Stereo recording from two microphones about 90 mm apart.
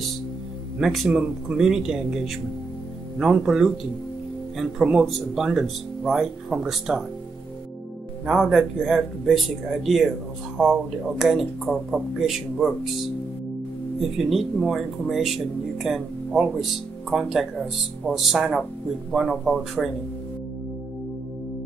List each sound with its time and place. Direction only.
0.7 s speech: 5° right (ahead or behind)
8.3 s speech: 5° right (ahead or behind)